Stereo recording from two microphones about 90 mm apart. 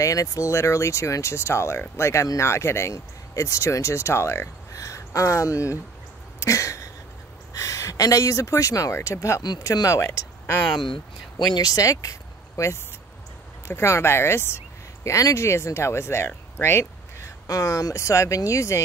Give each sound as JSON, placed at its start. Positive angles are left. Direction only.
{"t": 0.0, "sound": "speech", "side_deg": 40}
{"t": 6.4, "sound": "a sound", "side_deg": 35}
{"t": 7.5, "sound": "speech", "side_deg": 35}
{"t": 9.4, "sound": "speech", "side_deg": 50}
{"t": 9.7, "sound": "speech", "side_deg": 40}
{"t": 10.8, "sound": "speech", "side_deg": 65}
{"t": 11.5, "sound": "speech", "side_deg": 45}